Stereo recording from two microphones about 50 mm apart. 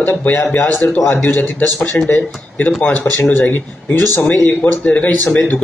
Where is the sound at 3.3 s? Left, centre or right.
Left.